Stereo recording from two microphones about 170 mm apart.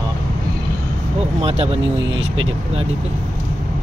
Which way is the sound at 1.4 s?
35° right (ahead or behind).